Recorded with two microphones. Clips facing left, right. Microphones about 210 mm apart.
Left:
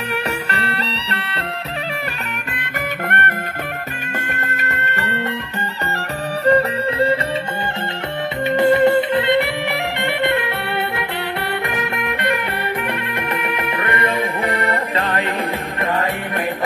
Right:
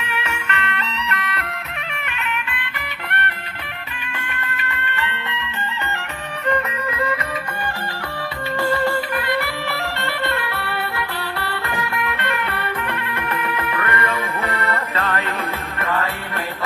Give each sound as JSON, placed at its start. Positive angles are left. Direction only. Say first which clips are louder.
{"t": 0.0, "sound": "music", "louder": "left 5 dB", "side_deg": 35}
{"t": 2.5, "sound": "music", "louder": "left 7 dB", "side_deg": 45}
{"t": 6.4, "sound": "music", "louder": "left 7 dB", "side_deg": 30}
{"t": 8.5, "sound": "music", "louder": "left 7 dB", "side_deg": 20}
{"t": 11.6, "sound": "music", "louder": "left 2 dB", "side_deg": 20}